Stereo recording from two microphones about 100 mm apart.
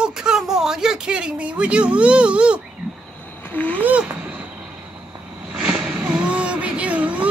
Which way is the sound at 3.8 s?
15° right (ahead or behind).